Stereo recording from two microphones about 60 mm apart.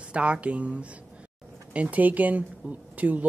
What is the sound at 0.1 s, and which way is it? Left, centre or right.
Speech, centre.